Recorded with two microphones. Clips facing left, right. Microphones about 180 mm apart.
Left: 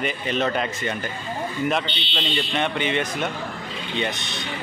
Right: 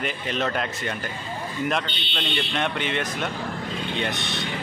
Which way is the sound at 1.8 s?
50° right (ahead or behind).